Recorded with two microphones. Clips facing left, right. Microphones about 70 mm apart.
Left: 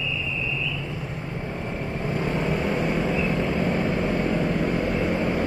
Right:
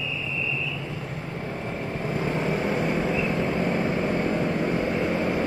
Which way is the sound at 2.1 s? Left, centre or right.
Right.